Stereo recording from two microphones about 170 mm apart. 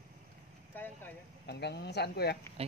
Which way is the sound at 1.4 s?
75° left (ahead or behind).